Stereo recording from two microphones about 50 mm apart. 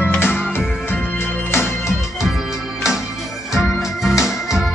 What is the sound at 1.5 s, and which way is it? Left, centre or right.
Music, left.